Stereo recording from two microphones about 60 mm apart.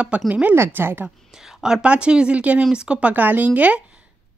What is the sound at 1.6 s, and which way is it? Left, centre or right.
Speech, centre.